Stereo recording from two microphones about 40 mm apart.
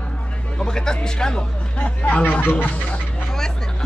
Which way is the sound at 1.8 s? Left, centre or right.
Left.